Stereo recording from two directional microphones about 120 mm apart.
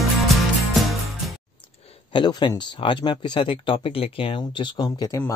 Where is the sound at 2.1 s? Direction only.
40° left (ahead or behind).